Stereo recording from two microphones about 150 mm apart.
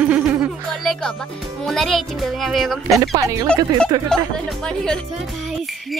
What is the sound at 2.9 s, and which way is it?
Speech, 20° right (ahead or behind).